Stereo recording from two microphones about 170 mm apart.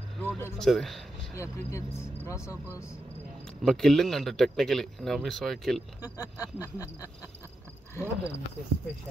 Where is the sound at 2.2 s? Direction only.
15° left (ahead or behind).